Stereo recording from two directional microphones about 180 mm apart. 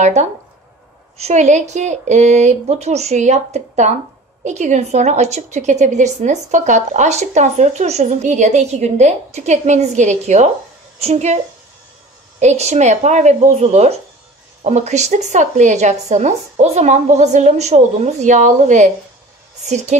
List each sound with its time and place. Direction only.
0.0 s a woman's voice: 40° right (ahead or behind)
12.4 s a woman's voice: 40° right (ahead or behind)